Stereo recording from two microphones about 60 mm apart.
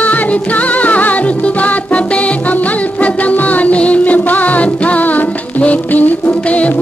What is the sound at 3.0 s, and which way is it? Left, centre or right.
Music, left.